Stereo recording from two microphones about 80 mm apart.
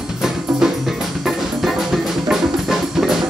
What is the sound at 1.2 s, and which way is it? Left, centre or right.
Music, centre.